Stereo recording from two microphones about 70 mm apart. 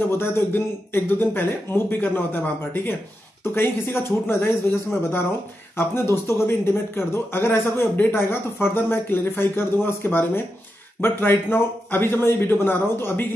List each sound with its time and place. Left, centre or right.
0.0 s speech: left
5.8 s speech: left